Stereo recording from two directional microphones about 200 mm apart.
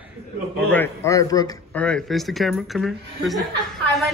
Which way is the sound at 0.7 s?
10° left (ahead or behind).